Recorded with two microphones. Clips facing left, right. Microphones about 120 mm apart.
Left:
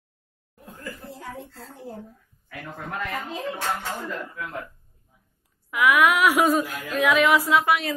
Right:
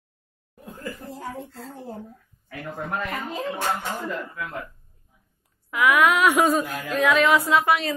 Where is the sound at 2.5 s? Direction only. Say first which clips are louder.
Right 4 dB; 45° right (ahead or behind).